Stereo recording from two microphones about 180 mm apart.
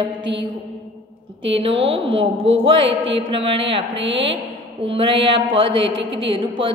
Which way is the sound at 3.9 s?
85° right.